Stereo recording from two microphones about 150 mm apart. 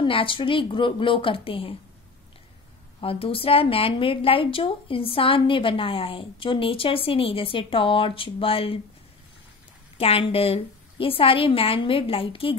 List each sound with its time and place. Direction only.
0.0 s a woman's voice: 35° left (ahead or behind)
3.0 s a woman's voice: 40° left (ahead or behind)
9.9 s a woman's voice: 40° left (ahead or behind)